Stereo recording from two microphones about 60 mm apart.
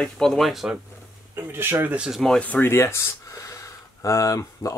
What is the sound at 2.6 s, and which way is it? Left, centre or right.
Speech, left.